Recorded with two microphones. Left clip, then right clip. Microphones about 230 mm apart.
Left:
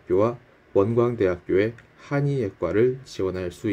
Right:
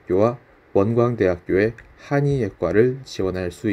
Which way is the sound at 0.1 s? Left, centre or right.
Right.